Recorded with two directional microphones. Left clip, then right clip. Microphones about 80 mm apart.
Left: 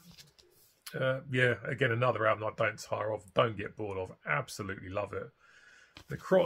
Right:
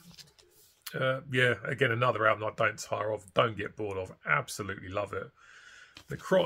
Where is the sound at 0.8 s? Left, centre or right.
Right.